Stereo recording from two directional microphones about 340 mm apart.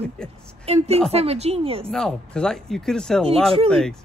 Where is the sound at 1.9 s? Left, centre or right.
Centre.